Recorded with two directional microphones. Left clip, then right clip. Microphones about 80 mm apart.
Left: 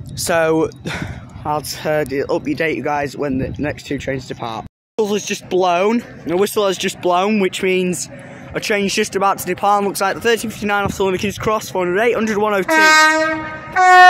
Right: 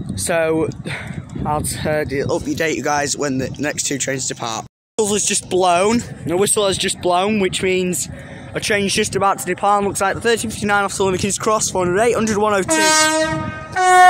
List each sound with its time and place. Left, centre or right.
0.2 s speech: left
2.3 s speech: centre
4.9 s speech: centre
6.4 s speech: centre
9.0 s speech: centre
10.6 s speech: centre
12.8 s train: right